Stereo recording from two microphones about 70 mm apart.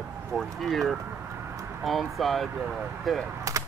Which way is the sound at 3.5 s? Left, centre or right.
Right.